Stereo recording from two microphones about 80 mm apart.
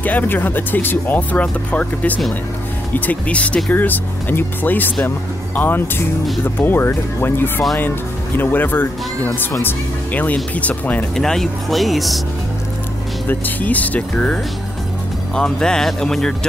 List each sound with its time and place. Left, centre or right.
0.0 s speech: left
11.1 s speech: centre
13.3 s speech: left